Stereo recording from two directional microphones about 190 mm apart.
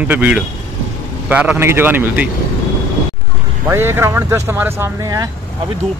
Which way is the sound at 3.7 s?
15° right (ahead or behind).